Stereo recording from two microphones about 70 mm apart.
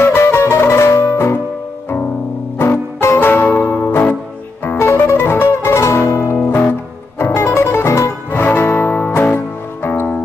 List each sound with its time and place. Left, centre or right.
0.0 s music: left
2.6 s music: left